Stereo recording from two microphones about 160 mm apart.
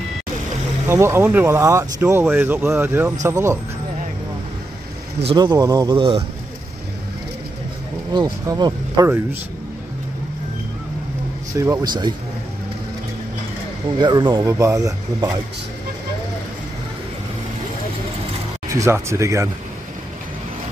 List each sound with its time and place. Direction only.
0.8 s speech: 15° right (ahead or behind)
5.3 s speech: 25° right (ahead or behind)
8.1 s speech: 25° right (ahead or behind)
11.5 s speech: 20° right (ahead or behind)
13.9 s speech: 30° right (ahead or behind)
18.7 s speech: 20° right (ahead or behind)